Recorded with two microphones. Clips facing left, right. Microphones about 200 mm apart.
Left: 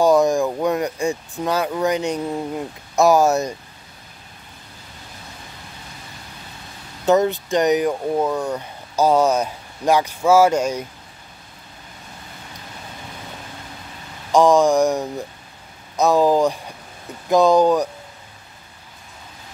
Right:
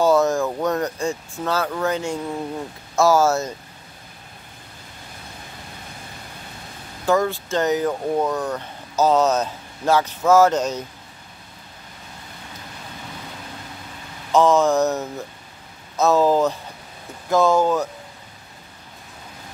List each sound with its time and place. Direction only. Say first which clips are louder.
0.0 s speech: left 2 dB; 15° left (ahead or behind)
7.1 s speech: left 3 dB; 20° left (ahead or behind)
14.3 s speech: left 2 dB; 15° left (ahead or behind)